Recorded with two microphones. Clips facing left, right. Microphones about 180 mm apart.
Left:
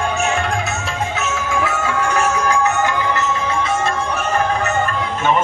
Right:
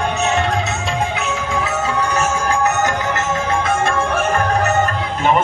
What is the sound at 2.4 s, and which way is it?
Music, 35° right (ahead or behind).